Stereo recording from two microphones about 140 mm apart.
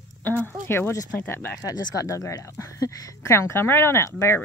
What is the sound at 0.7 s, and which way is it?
Speech, 20° left (ahead or behind).